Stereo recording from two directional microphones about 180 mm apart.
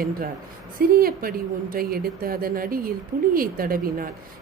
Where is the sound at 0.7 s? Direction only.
55° right (ahead or behind).